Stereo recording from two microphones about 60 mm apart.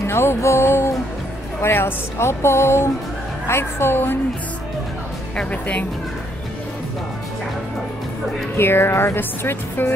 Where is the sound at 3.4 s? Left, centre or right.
Left.